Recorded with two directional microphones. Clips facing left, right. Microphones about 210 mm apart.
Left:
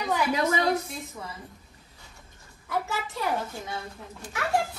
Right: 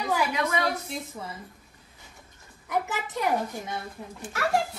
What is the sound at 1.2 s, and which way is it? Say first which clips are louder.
Speech: right 2 dB; 15° right (ahead or behind).